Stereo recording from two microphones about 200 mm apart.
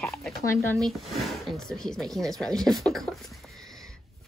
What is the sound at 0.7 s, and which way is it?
Speech, centre (ahead or behind).